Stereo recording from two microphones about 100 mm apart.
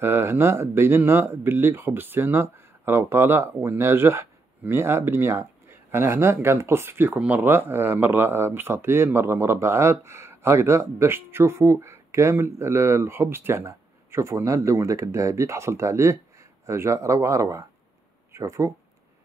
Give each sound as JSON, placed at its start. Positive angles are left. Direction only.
{"t": 0.0, "sound": "speech", "side_deg": -25}